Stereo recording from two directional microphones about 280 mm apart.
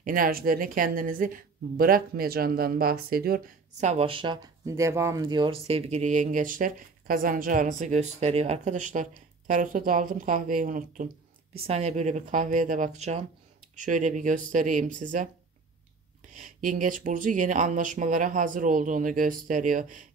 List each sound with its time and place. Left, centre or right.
0.0 s speech: right
16.3 s speech: right